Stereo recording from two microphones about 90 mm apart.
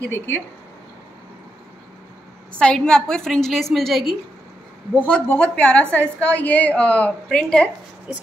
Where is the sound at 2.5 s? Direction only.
10° left (ahead or behind).